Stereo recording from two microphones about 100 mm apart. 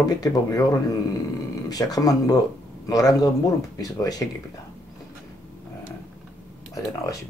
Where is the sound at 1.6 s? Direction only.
40° left (ahead or behind).